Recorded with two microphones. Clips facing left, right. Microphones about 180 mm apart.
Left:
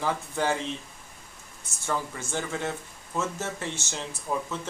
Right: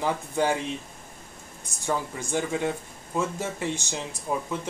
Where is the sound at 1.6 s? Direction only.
15° right (ahead or behind).